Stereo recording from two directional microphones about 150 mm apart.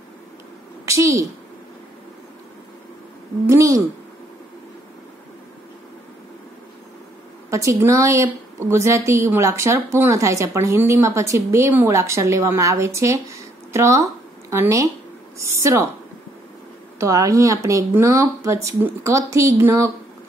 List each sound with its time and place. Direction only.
0.8 s a child's voice: 20° right (ahead or behind)
3.4 s a woman's voice: 20° right (ahead or behind)
7.5 s a woman's voice: 20° right (ahead or behind)
17.0 s a woman's voice: 20° right (ahead or behind)